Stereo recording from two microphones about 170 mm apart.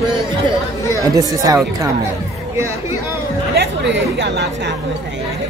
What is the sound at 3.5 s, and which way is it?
Speech, 90° right.